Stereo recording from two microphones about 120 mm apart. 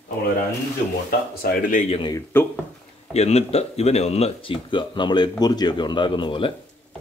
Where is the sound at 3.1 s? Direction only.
60° left (ahead or behind).